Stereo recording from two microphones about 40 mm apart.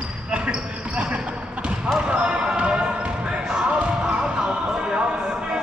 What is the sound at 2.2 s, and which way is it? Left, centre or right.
Basketball bounce, right.